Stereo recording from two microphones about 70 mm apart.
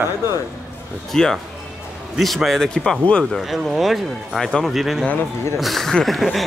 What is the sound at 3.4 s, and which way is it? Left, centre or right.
A man's voice, centre.